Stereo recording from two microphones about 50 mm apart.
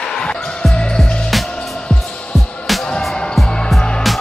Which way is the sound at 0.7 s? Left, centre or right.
Centre.